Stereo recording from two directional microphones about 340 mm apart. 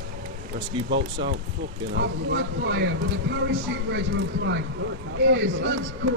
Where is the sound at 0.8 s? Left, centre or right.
Right.